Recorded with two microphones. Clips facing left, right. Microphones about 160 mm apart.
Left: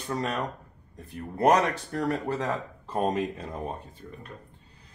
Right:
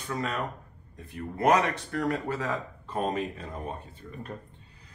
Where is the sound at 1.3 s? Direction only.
35° left (ahead or behind).